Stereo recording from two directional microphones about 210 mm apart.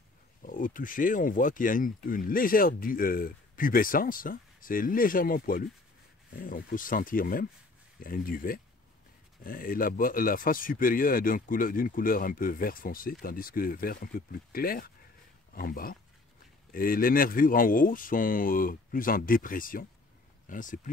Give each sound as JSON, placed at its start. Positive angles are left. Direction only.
{"t": 0.4, "sound": "speech", "side_deg": 40}